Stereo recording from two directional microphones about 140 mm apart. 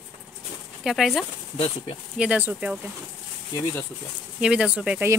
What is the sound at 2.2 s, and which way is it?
Speech, 5° right (ahead or behind).